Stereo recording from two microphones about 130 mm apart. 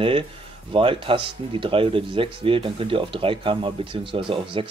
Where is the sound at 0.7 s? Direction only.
40° right (ahead or behind).